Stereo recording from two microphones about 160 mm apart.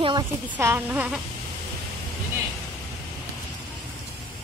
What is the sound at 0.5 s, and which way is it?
Music, 15° right (ahead or behind).